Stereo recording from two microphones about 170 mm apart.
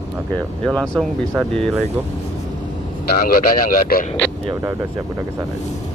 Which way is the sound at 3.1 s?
60° left (ahead or behind).